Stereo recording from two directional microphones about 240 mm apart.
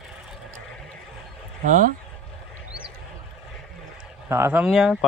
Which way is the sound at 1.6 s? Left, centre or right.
Right.